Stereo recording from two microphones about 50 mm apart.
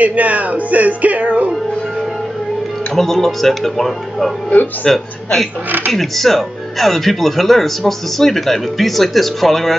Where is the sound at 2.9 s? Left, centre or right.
Centre.